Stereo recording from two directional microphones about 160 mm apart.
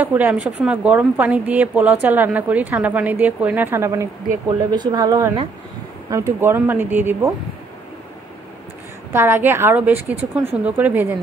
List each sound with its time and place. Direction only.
0.0 s a woman's voice: 10° right (ahead or behind)
9.1 s a woman's voice: 15° right (ahead or behind)